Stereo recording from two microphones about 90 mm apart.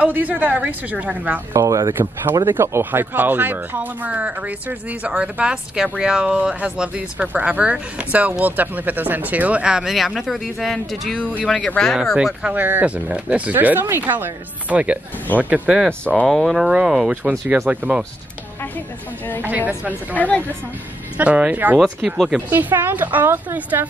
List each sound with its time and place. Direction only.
0.0 s speech: 15° right (ahead or behind)
1.5 s speech: 35° right (ahead or behind)
2.4 s speech: 25° right (ahead or behind); by 12.4 s centre (ahead or behind)
12.5 s speech: 20° right (ahead or behind)
16.3 s speech: centre (ahead or behind)
19.8 s speech: 15° right (ahead or behind)
20.2 s a woman's voice: 15° left (ahead or behind)
21.2 s speech: 15° right (ahead or behind)
21.7 s speech: 5° right (ahead or behind)
22.5 s speech: 20° right (ahead or behind)